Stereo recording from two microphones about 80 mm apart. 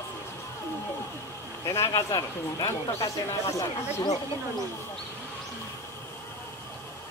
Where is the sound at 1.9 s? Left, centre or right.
Left.